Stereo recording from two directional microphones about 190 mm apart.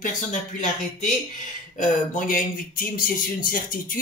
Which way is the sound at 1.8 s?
45° left (ahead or behind).